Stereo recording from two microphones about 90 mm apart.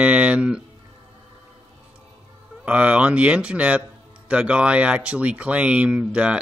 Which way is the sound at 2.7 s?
15° right (ahead or behind).